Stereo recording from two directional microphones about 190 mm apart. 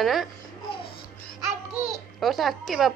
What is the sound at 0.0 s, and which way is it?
Speech, centre (ahead or behind).